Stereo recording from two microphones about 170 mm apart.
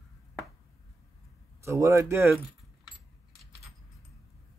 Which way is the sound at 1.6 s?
15° right (ahead or behind).